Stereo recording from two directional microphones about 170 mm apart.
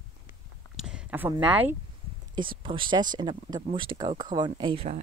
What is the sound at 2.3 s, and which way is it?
Speech, 30° right (ahead or behind).